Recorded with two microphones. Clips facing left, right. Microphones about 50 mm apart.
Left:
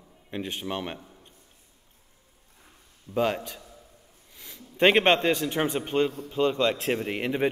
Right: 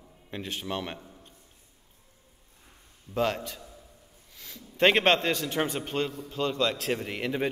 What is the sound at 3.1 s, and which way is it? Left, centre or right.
Speech, centre.